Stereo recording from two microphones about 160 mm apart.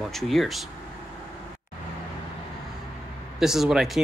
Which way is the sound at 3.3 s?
Centre (ahead or behind).